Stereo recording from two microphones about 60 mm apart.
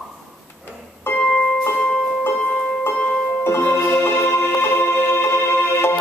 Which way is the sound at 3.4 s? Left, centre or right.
Left.